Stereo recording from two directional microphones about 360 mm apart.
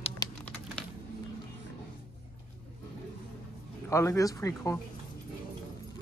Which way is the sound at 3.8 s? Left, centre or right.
Centre.